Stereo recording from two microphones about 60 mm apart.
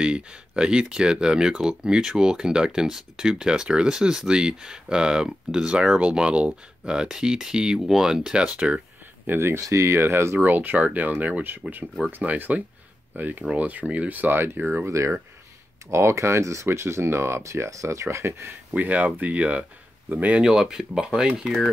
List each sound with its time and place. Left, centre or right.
0.0 s speech: centre
9.2 s speech: right
9.6 s speech: right
14.9 s speech: right
18.7 s speech: right
20.4 s speech: centre